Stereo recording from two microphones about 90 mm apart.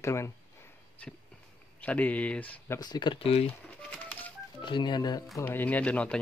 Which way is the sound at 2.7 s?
50° left (ahead or behind).